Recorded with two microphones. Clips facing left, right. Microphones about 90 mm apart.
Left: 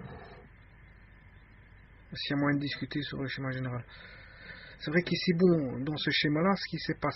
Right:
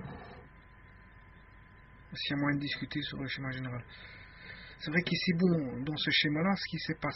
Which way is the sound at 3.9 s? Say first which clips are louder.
Left 1 dB; 25° left (ahead or behind).